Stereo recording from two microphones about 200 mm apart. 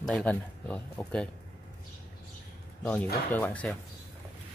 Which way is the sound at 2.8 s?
5° left (ahead or behind).